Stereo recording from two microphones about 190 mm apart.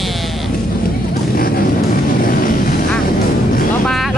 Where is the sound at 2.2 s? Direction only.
50° left (ahead or behind).